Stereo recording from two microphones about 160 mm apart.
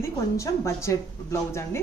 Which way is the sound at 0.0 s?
15° left (ahead or behind).